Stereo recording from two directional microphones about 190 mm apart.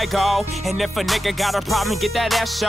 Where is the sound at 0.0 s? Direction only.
Centre (ahead or behind).